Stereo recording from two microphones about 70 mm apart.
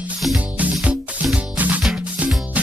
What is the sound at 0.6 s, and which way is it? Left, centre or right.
Music, right.